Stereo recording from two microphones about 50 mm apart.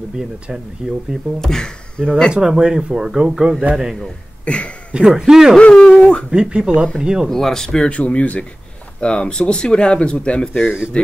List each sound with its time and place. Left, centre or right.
0.5 s speech: centre
1.4 s speech: centre
2.5 s speech: centre
4.5 s speech: left
4.9 s speech: centre
5.6 s speech: left
6.3 s speech: centre
7.2 s speech: centre
7.9 s speech: left